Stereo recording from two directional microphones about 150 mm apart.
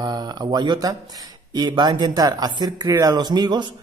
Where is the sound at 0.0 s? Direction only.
25° right (ahead or behind).